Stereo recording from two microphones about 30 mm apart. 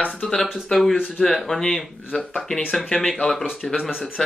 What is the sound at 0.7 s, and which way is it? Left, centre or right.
Speech, centre.